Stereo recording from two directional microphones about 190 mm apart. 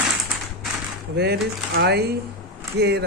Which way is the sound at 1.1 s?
60° right (ahead or behind).